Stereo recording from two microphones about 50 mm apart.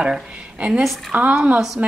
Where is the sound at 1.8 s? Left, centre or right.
Right.